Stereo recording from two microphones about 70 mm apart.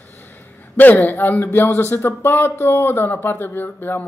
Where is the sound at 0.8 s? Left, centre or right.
Left.